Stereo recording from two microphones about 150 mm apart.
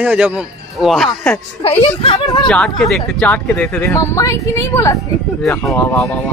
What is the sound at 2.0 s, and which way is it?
Speech, 35° left (ahead or behind).